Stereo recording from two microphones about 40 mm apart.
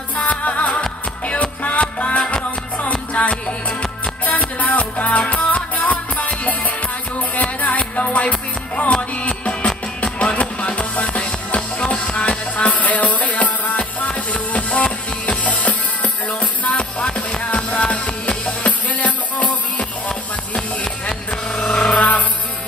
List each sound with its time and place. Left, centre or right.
0.1 s music: left
7.6 s music: left
21.1 s a sound: centre; by 22.2 s left